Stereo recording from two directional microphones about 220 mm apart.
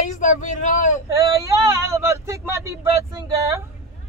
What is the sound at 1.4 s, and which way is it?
Speech, 15° right (ahead or behind).